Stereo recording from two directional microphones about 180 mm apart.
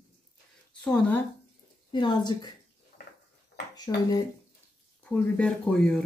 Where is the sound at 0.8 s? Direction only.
10° left (ahead or behind).